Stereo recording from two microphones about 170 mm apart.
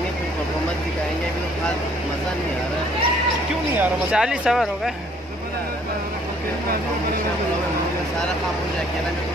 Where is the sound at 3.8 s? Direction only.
5° right (ahead or behind).